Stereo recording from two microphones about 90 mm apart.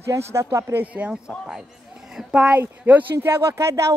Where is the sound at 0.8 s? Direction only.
15° right (ahead or behind).